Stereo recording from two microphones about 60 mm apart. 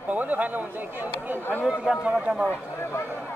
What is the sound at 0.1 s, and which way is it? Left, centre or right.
Speech, right.